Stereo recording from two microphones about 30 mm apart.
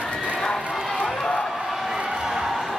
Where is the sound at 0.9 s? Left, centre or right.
Centre.